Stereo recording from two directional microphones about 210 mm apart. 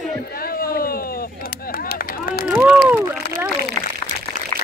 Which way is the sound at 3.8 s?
20° left (ahead or behind).